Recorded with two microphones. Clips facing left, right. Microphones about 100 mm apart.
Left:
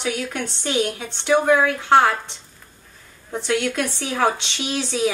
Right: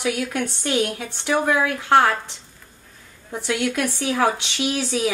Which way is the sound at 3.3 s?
10° right (ahead or behind).